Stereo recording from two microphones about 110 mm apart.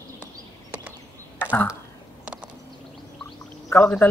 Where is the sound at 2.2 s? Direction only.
10° right (ahead or behind).